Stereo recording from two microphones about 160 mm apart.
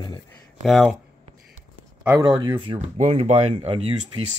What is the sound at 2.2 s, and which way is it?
Speech, 25° right (ahead or behind).